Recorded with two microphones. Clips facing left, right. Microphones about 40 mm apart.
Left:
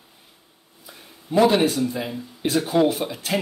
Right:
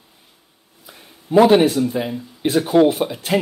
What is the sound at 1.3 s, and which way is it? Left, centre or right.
Speech, right.